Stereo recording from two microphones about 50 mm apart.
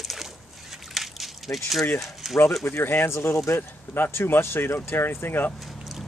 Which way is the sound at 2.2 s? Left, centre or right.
Centre.